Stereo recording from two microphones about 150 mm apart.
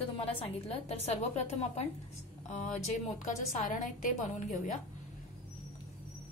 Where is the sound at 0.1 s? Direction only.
40° left (ahead or behind); by 4.6 s 55° left (ahead or behind).